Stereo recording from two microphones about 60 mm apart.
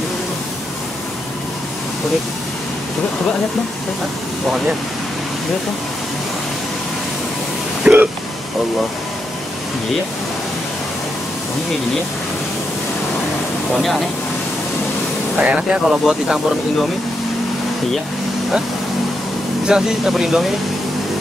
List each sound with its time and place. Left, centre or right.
7.8 s hiccup: right
13.7 s speech: centre
15.3 s speech: right
16.1 s speech: centre
19.6 s speech: centre